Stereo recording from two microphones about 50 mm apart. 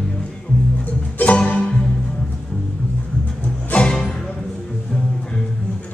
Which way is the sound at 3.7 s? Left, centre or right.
Centre.